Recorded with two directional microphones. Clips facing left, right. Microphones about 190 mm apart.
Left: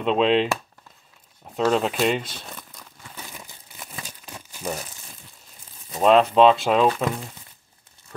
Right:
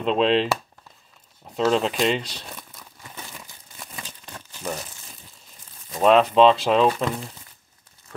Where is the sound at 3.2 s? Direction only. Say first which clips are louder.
Left 1 dB; 20° left (ahead or behind).